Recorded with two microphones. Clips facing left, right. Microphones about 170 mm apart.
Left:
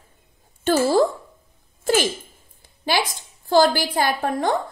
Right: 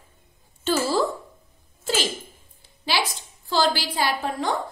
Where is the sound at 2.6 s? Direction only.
50° left (ahead or behind).